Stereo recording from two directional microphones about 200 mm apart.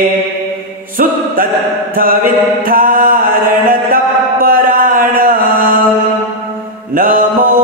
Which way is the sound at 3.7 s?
45° right (ahead or behind).